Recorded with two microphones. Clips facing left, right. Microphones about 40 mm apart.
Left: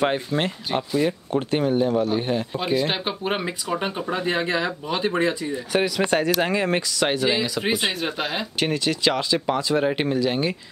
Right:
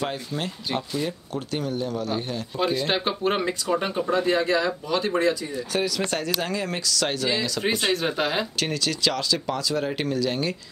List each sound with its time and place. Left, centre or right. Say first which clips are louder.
0.0 s speech: left 7 dB; left
0.7 s speech: left 6 dB; centre
1.3 s speech: left 7 dB; left
2.6 s speech: right 3 dB; centre
8.5 s speech: left 3 dB; left